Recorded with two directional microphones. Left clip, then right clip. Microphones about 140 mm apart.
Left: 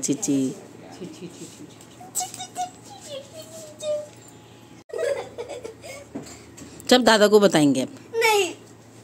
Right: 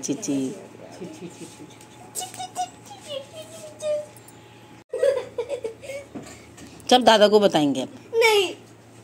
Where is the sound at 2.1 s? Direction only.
50° left (ahead or behind).